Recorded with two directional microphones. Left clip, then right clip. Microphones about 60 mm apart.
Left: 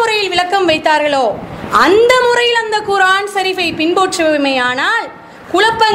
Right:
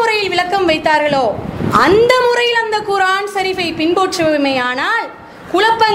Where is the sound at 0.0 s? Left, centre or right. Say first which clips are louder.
Left 1 dB; left.